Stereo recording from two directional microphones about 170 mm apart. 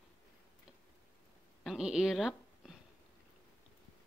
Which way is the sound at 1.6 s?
Centre (ahead or behind).